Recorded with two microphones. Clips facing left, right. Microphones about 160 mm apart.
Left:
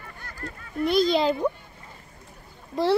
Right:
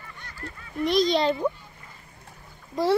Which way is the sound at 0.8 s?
5° left (ahead or behind).